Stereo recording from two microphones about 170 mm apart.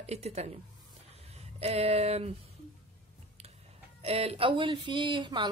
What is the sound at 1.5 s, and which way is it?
Speech, 35° right (ahead or behind).